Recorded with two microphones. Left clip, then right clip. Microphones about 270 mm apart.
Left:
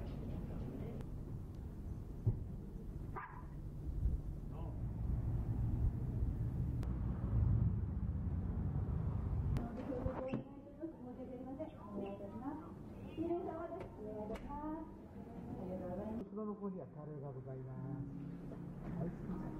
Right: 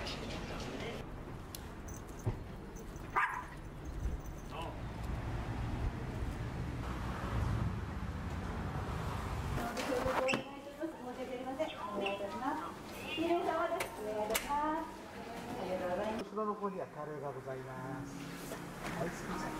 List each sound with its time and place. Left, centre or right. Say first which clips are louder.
0.0 s vehicle: right 9 dB; centre
6.9 s vehicle: right 8 dB; centre
11.1 s a sound: right 11 dB; centre